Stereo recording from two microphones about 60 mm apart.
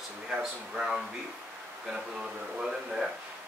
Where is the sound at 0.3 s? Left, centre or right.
Centre.